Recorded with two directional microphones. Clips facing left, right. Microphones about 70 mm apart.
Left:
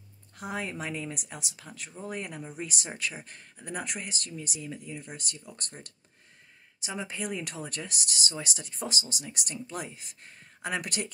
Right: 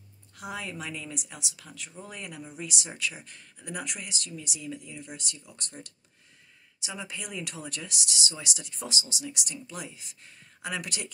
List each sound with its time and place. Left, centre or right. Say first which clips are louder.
0.4 s speech: left 2 dB; left
6.8 s speech: left 4 dB; left